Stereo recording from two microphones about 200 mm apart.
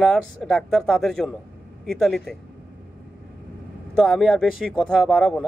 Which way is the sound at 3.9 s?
Centre (ahead or behind).